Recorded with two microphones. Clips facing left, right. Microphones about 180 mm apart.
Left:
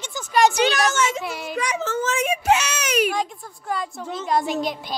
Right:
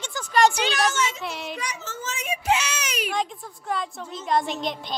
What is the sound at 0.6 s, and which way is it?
Speech, 45° left (ahead or behind).